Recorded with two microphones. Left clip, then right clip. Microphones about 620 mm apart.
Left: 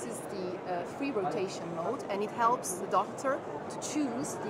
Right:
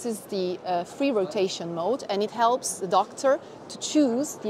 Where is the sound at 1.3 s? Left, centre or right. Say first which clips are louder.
Right 7 dB; right.